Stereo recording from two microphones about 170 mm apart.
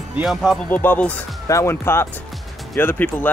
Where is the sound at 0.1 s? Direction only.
Centre (ahead or behind).